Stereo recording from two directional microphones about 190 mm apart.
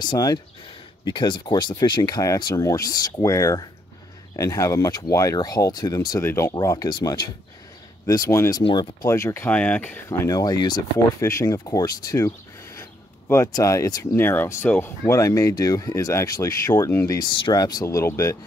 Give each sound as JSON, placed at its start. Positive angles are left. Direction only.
{"t": 0.0, "sound": "speech", "side_deg": 20}